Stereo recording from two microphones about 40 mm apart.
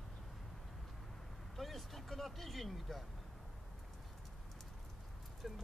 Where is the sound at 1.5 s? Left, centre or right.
Centre.